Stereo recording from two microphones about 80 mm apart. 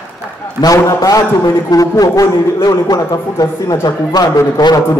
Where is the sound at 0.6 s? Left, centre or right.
Left.